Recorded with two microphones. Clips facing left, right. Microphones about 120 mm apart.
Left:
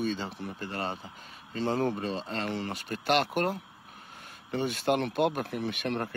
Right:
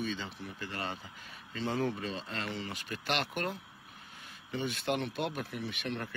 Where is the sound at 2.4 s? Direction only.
50° left (ahead or behind).